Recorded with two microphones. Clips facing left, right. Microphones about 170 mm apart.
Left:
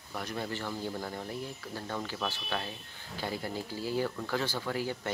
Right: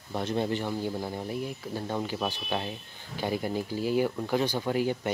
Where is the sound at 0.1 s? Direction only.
25° right (ahead or behind).